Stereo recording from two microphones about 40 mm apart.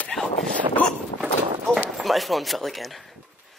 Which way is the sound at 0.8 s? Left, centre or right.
Left.